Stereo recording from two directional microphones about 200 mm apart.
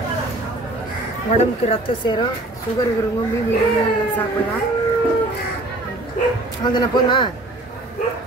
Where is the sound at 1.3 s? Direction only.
25° left (ahead or behind).